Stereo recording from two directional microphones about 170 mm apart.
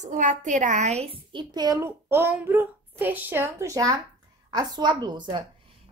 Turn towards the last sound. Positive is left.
turn(degrees=-25)  # may be behind; listen again after turning